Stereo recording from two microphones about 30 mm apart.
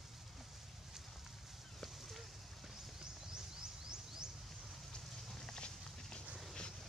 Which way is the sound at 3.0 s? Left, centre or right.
Right.